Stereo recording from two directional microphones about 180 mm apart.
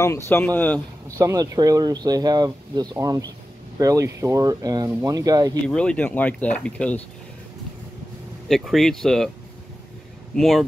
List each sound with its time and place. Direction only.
0.0 s speech: 15° left (ahead or behind)
1.0 s speech: 20° right (ahead or behind)
5.7 s speech: 5° left (ahead or behind)
8.5 s speech: centre (ahead or behind)
10.3 s speech: centre (ahead or behind)